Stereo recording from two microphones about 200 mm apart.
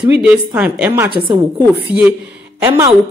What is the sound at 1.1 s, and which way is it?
Speech, 25° right (ahead or behind).